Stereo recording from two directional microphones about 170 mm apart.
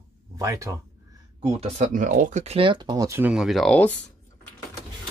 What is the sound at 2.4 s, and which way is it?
Speech, 35° right (ahead or behind).